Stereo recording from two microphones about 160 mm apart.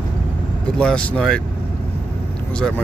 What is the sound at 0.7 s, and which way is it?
Speech, 5° left (ahead or behind).